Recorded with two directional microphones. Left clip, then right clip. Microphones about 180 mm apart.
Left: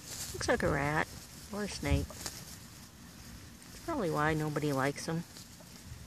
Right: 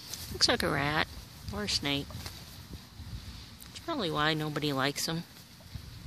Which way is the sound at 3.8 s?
5° right (ahead or behind).